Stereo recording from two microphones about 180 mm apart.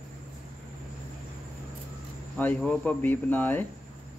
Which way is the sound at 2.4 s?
10° left (ahead or behind).